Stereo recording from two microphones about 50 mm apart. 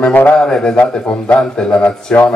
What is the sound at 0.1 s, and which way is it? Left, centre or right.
Speech, left.